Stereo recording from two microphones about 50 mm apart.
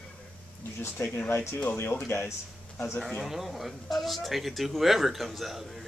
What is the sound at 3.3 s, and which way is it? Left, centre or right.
Speech, centre.